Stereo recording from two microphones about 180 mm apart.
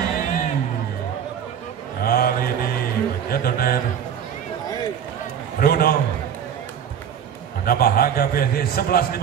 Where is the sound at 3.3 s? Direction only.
55° left (ahead or behind).